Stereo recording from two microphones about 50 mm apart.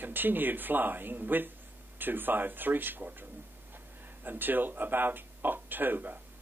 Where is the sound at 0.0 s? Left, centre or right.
Right.